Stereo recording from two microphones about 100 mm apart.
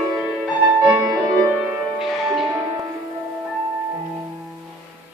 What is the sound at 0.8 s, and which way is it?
Music, 15° right (ahead or behind).